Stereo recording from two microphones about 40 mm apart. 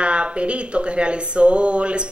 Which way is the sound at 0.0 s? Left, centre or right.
Right.